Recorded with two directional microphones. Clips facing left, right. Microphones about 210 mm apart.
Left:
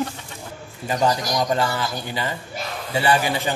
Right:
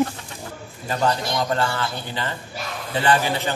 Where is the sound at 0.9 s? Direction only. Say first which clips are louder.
Left 1 dB; 15° left (ahead or behind).